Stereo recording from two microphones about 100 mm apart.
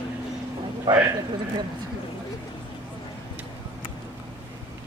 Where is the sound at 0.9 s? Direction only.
45° right (ahead or behind).